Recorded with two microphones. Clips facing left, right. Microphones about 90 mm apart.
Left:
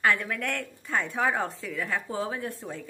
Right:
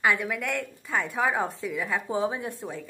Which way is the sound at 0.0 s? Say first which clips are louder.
Right 1 dB; 10° right (ahead or behind).